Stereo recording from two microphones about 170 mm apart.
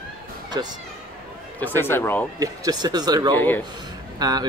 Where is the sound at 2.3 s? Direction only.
20° right (ahead or behind).